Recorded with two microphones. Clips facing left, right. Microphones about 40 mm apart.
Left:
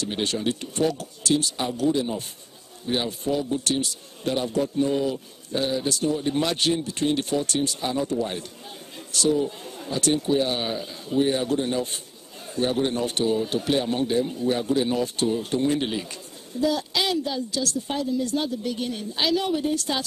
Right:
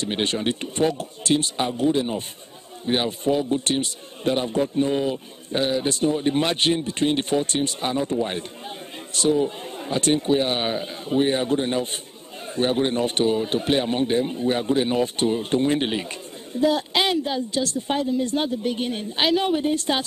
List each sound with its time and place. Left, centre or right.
0.0 s a man's voice: right